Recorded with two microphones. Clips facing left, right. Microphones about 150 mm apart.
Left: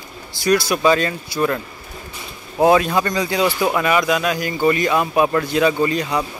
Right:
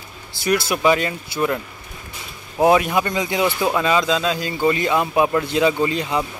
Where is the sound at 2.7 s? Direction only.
20° right (ahead or behind).